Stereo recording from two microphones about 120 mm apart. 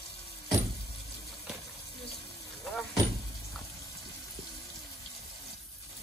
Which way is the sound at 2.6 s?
5° left (ahead or behind).